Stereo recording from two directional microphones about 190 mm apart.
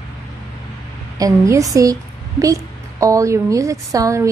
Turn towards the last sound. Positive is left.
turn(degrees=-15)  # may be behind; listen again after turning